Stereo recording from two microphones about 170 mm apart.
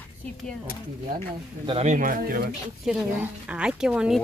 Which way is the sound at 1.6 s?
40° right (ahead or behind).